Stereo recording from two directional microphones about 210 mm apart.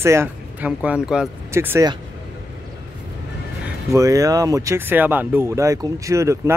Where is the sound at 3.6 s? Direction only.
15° right (ahead or behind).